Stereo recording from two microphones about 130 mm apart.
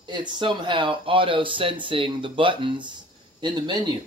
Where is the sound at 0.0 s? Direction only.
35° right (ahead or behind).